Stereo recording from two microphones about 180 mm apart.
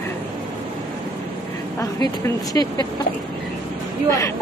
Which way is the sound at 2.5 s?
20° left (ahead or behind).